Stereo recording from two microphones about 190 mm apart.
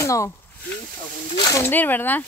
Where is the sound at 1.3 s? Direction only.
15° left (ahead or behind).